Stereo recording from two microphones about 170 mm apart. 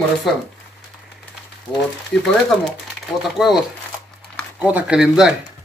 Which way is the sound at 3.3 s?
Centre (ahead or behind).